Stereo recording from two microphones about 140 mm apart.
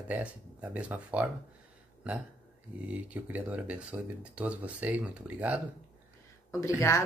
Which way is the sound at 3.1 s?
10° right (ahead or behind).